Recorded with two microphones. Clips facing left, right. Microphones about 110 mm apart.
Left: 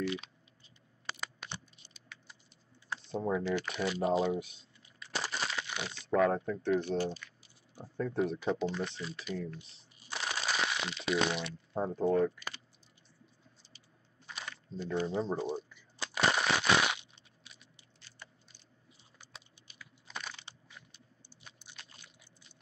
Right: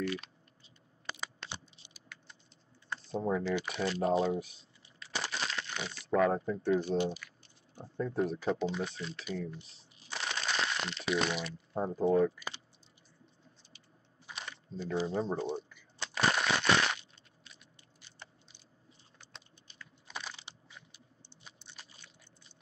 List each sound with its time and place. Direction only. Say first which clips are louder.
1.5 s computer keyboard: even; 5° right (ahead or behind)
2.9 s typing: right 1 dB; centre (ahead or behind)
3.7 s speech: right 1 dB; 5° left (ahead or behind)
5.2 s a sound: even; centre (ahead or behind)
6.6 s speech: right 2 dB; 20° right (ahead or behind)
14.7 s a sound: even; 5° right (ahead or behind)
18.0 s a sound: right 1 dB; 20° right (ahead or behind)
19.1 s typing: left 1 dB; 10° left (ahead or behind)
20.1 s computer keyboard: even; 10° right (ahead or behind)